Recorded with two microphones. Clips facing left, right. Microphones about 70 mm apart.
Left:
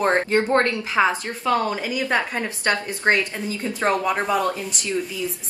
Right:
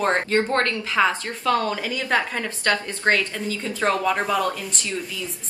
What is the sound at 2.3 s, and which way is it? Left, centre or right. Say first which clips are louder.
Speech: even; centre.